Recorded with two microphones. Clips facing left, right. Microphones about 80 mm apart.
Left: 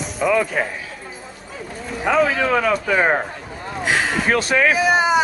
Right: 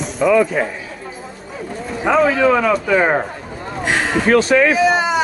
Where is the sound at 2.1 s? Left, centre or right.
Centre.